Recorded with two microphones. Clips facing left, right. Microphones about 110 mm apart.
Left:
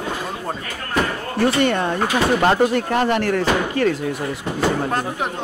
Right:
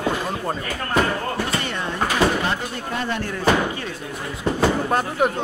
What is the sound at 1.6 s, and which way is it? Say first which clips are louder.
Speech: left 8 dB; 50° left (ahead or behind).